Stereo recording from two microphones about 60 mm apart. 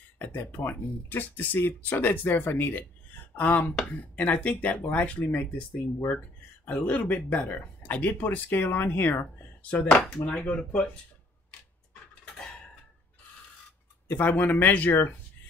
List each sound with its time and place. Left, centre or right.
0.4 s speech: left
6.7 s speech: left
9.6 s speech: left
14.0 s speech: left